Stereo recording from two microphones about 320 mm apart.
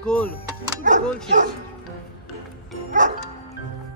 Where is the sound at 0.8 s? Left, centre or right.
Right.